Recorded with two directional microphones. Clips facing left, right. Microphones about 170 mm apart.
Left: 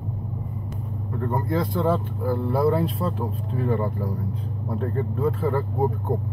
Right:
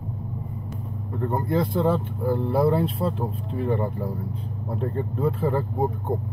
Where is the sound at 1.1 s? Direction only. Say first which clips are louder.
Right 1 dB; 25° right (ahead or behind).